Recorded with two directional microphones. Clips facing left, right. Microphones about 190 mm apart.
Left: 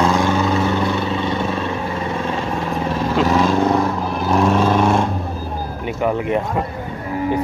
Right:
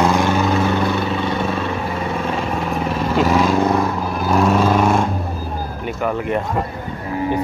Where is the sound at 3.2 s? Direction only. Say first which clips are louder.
Even; 10° right (ahead or behind).